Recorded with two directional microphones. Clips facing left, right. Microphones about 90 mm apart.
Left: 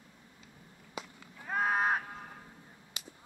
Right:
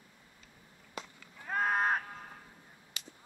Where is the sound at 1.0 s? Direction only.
5° left (ahead or behind).